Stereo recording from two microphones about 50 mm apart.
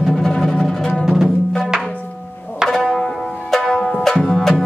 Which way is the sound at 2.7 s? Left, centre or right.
Centre.